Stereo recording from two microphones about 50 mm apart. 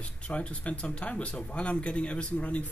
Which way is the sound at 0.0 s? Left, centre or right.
Left.